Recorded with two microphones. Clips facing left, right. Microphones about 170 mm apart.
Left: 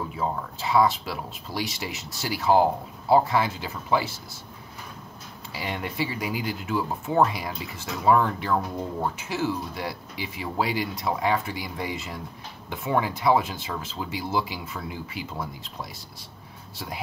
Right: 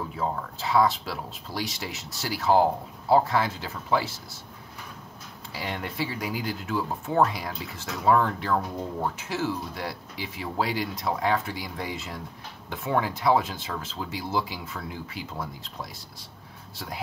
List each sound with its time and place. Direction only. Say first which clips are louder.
0.1 s speech: left 1 dB; 5° left (ahead or behind)
5.5 s speech: left 1 dB; 5° left (ahead or behind)